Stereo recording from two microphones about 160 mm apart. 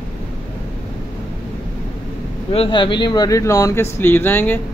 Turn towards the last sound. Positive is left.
turn(degrees=15)  # may be behind; listen again after turning